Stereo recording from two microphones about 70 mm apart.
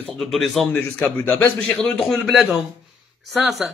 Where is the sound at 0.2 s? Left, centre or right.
Centre.